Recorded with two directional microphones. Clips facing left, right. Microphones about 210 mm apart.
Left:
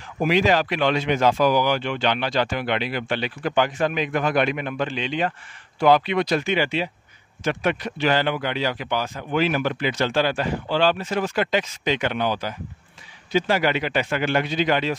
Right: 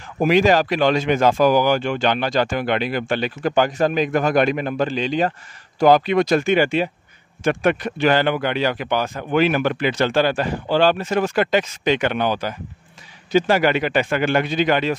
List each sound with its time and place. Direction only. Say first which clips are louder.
0.2 s speech: right 4 dB; 45° right (ahead or behind)
13.3 s speech: right 4 dB; 45° right (ahead or behind)